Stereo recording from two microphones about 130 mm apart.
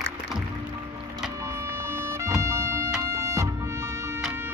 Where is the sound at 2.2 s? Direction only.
20° right (ahead or behind).